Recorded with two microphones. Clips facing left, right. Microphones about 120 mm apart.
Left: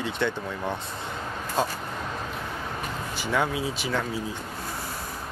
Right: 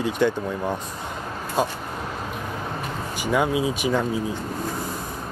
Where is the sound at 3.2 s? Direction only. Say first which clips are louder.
Right 5 dB; 15° right (ahead or behind).